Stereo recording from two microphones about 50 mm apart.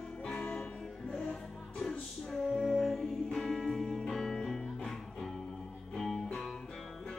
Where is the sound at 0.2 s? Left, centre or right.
Left.